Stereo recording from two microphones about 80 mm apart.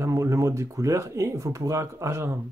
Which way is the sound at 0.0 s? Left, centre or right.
Right.